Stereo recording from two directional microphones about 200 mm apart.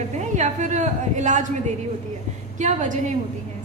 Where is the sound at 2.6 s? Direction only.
40° right (ahead or behind).